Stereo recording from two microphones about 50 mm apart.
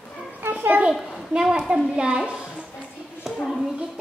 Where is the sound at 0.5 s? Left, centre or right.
Right.